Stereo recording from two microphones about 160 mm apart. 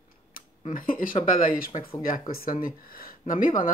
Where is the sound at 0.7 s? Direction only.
60° left (ahead or behind).